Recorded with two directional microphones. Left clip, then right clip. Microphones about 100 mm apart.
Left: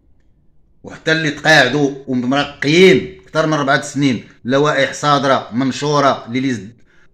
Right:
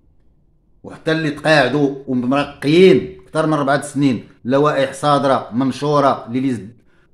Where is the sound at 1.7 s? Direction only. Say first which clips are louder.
Left 1 dB; 45° right (ahead or behind).